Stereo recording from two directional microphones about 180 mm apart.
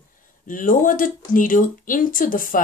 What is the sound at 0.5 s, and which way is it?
Speech, 50° left (ahead or behind).